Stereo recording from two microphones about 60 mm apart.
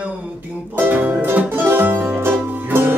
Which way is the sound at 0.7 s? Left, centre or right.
Right.